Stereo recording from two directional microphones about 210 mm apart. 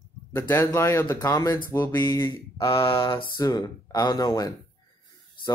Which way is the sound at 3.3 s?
15° left (ahead or behind).